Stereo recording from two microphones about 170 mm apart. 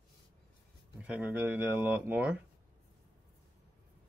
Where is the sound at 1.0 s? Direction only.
10° right (ahead or behind).